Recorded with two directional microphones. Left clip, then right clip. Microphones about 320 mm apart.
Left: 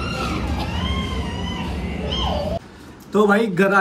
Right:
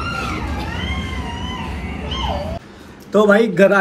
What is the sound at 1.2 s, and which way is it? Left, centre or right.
Cat, centre.